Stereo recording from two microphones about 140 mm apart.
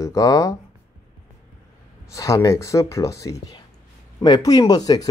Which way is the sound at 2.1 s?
25° left (ahead or behind).